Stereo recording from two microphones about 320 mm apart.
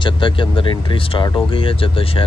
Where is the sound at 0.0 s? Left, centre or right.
Centre.